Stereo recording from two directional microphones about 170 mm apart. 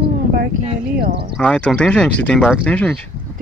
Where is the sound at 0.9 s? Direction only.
70° right (ahead or behind).